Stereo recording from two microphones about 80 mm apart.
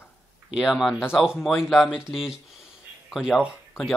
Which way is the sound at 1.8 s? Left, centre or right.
Centre.